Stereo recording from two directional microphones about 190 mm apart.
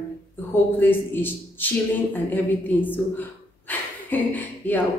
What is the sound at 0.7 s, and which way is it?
A woman's voice, 10° left (ahead or behind).